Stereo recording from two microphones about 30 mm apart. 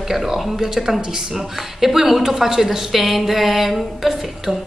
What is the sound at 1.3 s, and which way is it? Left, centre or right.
A woman's voice, centre.